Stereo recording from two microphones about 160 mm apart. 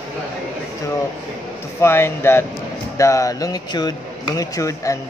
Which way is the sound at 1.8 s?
15° left (ahead or behind).